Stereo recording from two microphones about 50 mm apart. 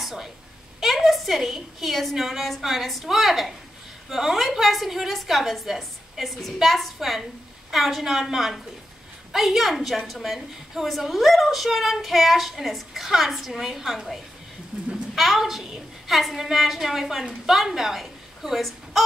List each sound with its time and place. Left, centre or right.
0.0 s a sound: centre
0.7 s a woman's voice: centre
15.1 s a woman's voice: centre